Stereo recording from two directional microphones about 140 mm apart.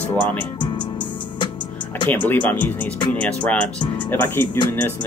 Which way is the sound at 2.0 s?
10° left (ahead or behind).